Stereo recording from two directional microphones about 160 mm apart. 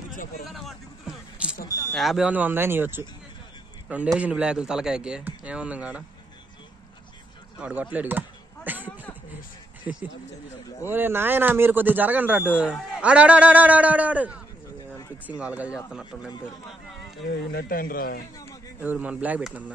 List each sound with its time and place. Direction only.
0.1 s speech: 60° left (ahead or behind)
0.5 s a sound: centre (ahead or behind)
1.7 s vehicle: 20° left (ahead or behind)
2.0 s a man's voice: centre (ahead or behind)
7.5 s a man's voice: 10° right (ahead or behind)
8.6 s a sound: 10° right (ahead or behind)
9.9 s a man's voice: 5° right (ahead or behind)
17.5 s speech: 70° left (ahead or behind)
18.8 s a man's voice: 10° right (ahead or behind)